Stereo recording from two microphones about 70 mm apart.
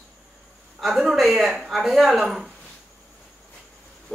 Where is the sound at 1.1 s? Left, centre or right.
Centre.